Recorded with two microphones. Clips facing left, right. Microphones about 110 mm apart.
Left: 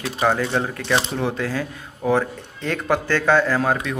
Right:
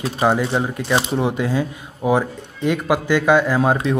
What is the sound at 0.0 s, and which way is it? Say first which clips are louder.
A man's voice: right 2 dB; 15° right (ahead or behind).